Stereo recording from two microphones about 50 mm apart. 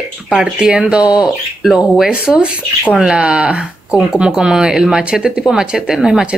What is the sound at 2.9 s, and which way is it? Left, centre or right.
Speech, centre.